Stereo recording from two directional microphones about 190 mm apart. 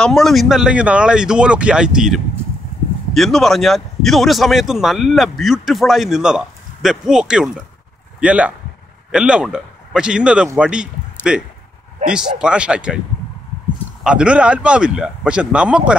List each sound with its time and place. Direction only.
0.0 s speech: centre (ahead or behind)
14.0 s speech: 5° right (ahead or behind)